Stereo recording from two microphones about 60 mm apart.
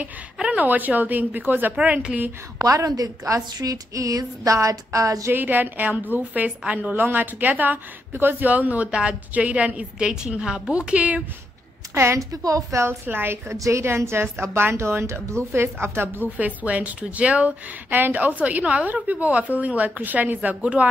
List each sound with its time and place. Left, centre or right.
0.5 s a woman's voice: right
1.8 s a woman's voice: centre
2.6 s a woman's voice: right
5.3 s a woman's voice: right
11.9 s a woman's voice: right
12.2 s a woman's voice: right
12.8 s a woman's voice: right
13.6 s a woman's voice: right
16.3 s a woman's voice: right
17.9 s a woman's voice: right